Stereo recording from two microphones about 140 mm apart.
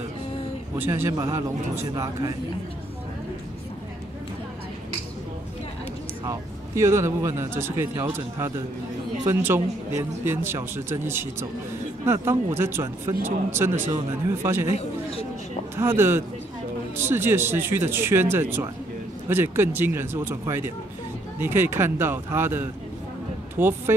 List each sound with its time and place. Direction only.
0.7 s speech: 15° right (ahead or behind)
6.2 s speech: 20° right (ahead or behind)
14.8 s speech: 45° left (ahead or behind)
15.7 s speech: 15° right (ahead or behind)